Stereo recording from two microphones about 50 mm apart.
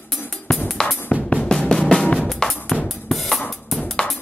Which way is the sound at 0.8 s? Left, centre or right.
Left.